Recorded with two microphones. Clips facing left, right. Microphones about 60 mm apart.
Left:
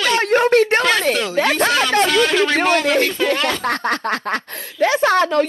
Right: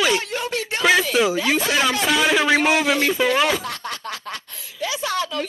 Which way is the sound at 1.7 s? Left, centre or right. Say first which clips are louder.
Left 4 dB; centre.